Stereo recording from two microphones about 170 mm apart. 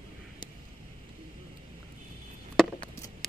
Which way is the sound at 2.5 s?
Centre (ahead or behind).